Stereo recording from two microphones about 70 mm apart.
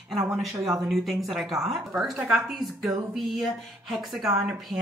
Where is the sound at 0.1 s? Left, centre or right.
Centre.